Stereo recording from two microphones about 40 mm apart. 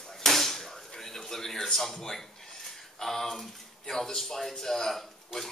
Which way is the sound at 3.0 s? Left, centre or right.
Centre.